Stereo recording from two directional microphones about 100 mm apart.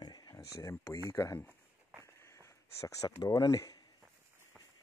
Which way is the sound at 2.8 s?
30° left (ahead or behind).